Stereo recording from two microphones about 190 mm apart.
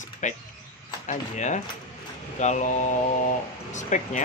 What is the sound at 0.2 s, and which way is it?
Speech, 40° left (ahead or behind).